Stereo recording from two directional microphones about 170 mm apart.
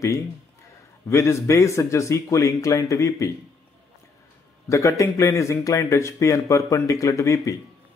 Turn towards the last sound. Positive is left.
turn(degrees=20)  # may be behind; listen again after turning